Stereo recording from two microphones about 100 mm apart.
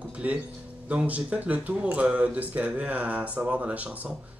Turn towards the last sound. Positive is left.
turn(degrees=-10)  # may be behind; listen again after turning